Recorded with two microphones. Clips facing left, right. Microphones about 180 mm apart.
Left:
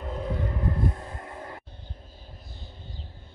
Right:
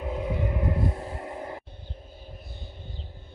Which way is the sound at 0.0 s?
10° right (ahead or behind).